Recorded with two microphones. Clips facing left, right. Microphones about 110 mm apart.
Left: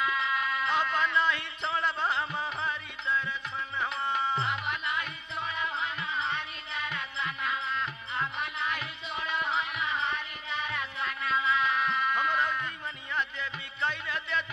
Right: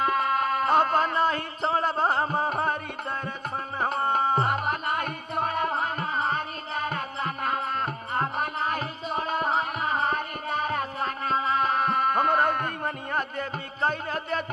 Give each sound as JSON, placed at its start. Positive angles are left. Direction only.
{"t": 0.0, "sound": "music", "side_deg": -50}